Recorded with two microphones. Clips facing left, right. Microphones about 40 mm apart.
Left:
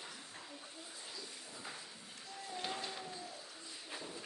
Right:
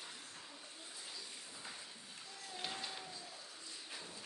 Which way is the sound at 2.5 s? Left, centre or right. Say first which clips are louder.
Left 3 dB; centre.